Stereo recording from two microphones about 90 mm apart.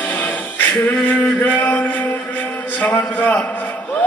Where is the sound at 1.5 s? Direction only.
20° left (ahead or behind).